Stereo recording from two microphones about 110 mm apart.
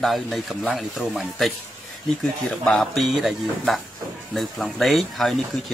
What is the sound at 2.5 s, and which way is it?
Speech, 5° left (ahead or behind).